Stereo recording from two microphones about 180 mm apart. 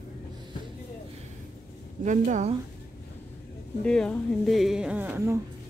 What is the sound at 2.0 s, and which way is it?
Speech, 40° right (ahead or behind).